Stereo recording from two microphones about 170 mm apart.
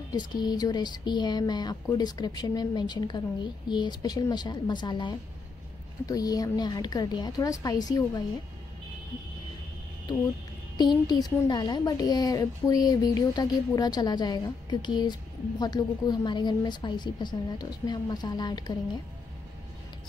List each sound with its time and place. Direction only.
0.1 s speech: 25° left (ahead or behind)
10.8 s speech: 25° left (ahead or behind)